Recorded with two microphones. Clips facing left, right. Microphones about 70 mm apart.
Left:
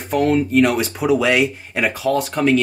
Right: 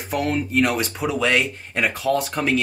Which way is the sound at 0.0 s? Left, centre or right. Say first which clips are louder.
Left 6 dB; centre.